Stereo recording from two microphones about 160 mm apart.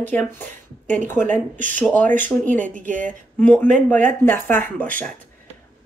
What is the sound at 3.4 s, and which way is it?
A woman's voice, 10° left (ahead or behind).